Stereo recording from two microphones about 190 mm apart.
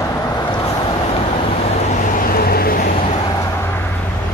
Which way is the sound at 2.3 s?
50° left (ahead or behind).